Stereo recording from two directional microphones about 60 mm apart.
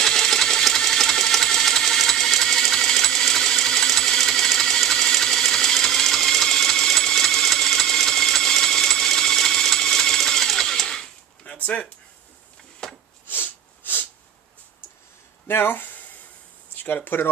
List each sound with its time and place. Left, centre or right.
0.0 s engine: centre
11.4 s a sound: left
12.8 s wood: centre
13.3 s sneeze: left
15.4 s a sound: left
16.8 s speech: left